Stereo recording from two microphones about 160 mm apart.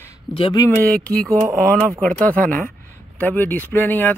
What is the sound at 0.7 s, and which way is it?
Speech, 10° left (ahead or behind).